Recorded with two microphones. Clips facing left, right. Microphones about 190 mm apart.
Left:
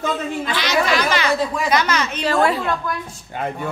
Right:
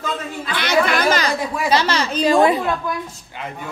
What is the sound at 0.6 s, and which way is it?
Chatter, 55° right (ahead or behind).